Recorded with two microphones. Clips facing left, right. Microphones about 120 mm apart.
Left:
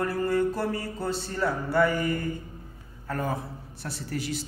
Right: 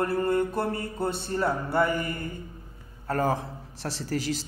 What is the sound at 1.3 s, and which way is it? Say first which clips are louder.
Mantra: even; 25° right (ahead or behind).